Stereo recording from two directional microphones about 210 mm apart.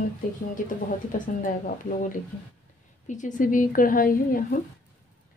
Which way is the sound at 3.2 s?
40° left (ahead or behind).